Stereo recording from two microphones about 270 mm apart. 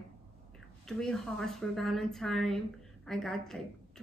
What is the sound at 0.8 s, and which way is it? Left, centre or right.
A woman's voice, centre.